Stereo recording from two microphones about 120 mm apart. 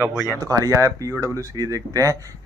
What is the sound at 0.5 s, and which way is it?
Speech, 25° right (ahead or behind).